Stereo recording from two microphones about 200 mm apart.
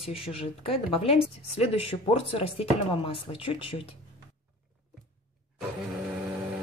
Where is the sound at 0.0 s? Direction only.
30° left (ahead or behind).